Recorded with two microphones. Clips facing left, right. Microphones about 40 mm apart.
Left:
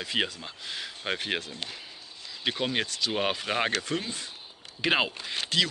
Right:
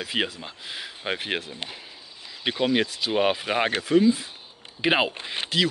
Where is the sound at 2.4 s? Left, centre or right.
Centre.